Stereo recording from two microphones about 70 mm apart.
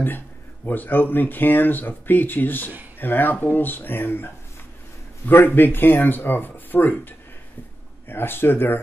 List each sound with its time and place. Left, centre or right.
0.7 s speech: left